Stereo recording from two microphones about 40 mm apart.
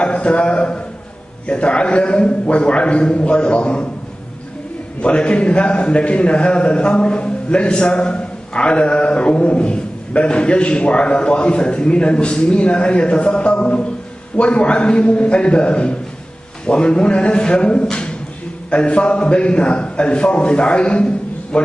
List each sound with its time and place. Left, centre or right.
0.0 s a man's voice: left
5.0 s a man's voice: left